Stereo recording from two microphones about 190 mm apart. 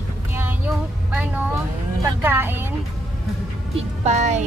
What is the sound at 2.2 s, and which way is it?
Speech, 10° right (ahead or behind).